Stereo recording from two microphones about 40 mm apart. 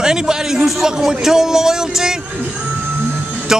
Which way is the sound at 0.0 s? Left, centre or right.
Centre.